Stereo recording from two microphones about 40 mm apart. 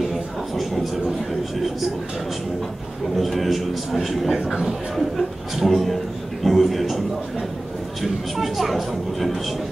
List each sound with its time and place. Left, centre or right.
3.2 s speech: centre
8.0 s speech: centre